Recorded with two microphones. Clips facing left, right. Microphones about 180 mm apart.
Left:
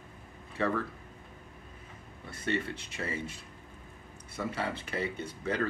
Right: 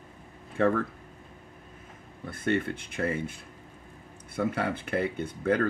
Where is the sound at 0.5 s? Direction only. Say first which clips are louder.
Right 6 dB; 50° right (ahead or behind).